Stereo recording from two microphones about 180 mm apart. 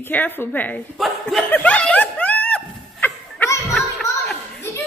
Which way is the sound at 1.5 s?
10° left (ahead or behind).